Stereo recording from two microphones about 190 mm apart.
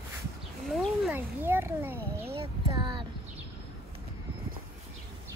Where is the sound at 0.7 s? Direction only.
Centre (ahead or behind).